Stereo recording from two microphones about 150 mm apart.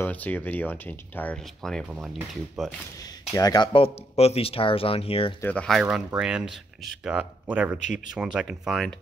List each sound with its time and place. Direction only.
0.0 s speech: 10° left (ahead or behind)
1.9 s speech: 5° right (ahead or behind)
3.3 s speech: 30° left (ahead or behind)
5.4 s speech: 10° left (ahead or behind)